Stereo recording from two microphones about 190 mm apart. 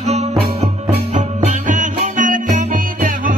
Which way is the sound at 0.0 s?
35° right (ahead or behind).